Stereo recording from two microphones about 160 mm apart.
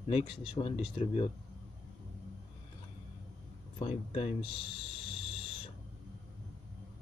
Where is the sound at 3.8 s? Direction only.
40° left (ahead or behind).